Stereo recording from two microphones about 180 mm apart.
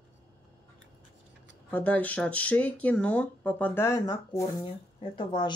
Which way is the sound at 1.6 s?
10° left (ahead or behind).